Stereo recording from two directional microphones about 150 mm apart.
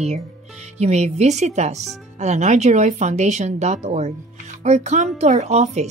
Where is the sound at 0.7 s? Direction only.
45° right (ahead or behind).